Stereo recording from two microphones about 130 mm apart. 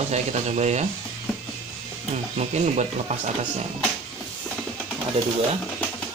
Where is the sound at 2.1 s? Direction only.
60° right (ahead or behind).